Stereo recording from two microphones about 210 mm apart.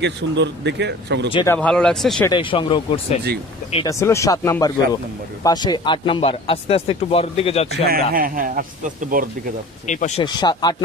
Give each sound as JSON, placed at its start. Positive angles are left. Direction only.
{"t": 0.0, "sound": "speech", "side_deg": -55}
{"t": 1.3, "sound": "speech", "side_deg": 15}
{"t": 2.2, "sound": "speech", "side_deg": 25}
{"t": 7.9, "sound": "speech", "side_deg": -45}
{"t": 9.8, "sound": "speech", "side_deg": 35}
{"t": 10.2, "sound": "speech", "side_deg": 20}